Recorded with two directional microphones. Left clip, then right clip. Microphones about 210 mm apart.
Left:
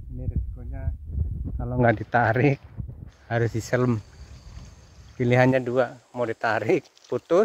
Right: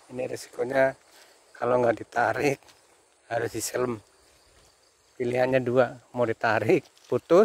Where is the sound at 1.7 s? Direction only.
20° right (ahead or behind).